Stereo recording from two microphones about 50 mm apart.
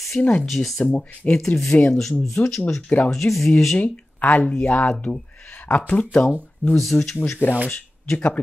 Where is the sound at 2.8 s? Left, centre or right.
Left.